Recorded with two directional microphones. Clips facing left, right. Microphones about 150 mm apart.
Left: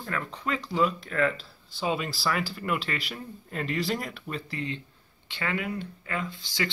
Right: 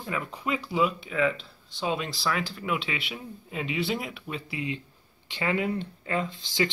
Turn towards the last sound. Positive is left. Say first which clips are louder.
# right 4 dB
turn(degrees=-20)  # may be behind; listen again after turning